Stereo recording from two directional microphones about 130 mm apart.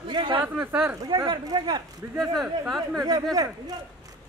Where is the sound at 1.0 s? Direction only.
35° right (ahead or behind).